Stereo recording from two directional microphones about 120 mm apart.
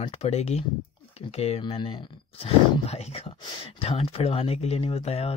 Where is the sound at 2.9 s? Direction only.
60° left (ahead or behind).